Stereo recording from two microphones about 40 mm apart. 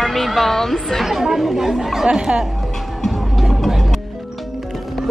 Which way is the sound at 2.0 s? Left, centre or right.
Right.